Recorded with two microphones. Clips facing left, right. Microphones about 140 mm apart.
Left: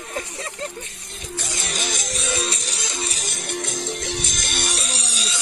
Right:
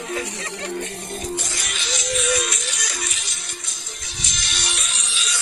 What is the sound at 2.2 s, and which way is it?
Music, 30° left (ahead or behind).